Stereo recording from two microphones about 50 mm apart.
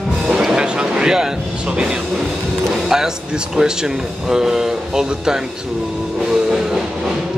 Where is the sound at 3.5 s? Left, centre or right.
Centre.